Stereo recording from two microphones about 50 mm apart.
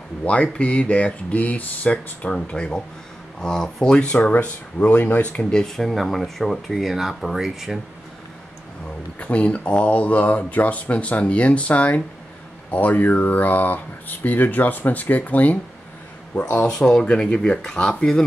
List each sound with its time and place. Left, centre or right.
0.2 s speech: left
4.1 s speech: left
5.2 s speech: left
5.5 s speech: centre
9.2 s speech: left